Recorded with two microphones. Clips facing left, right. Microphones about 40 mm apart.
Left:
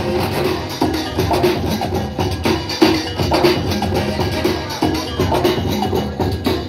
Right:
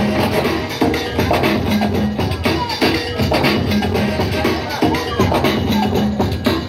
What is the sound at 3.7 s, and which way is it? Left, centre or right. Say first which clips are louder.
Music: right 2 dB; right.